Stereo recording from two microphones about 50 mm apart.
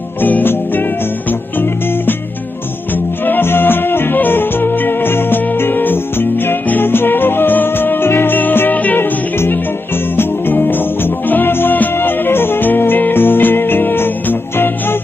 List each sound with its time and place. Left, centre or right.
0.2 s music: left
3.3 s music: left
10.1 s music: left